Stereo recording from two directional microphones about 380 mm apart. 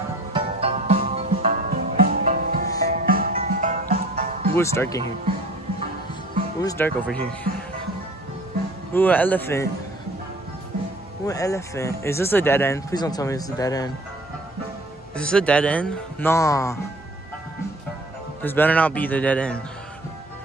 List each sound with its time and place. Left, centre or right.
0.3 s music: centre
4.6 s speech: centre
6.6 s a man's voice: centre
8.9 s a man's voice: centre
11.2 s speech: centre
15.1 s a man's voice: centre
18.4 s a man's voice: centre